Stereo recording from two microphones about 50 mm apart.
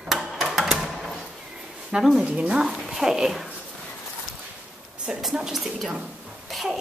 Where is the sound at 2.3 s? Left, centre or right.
Centre.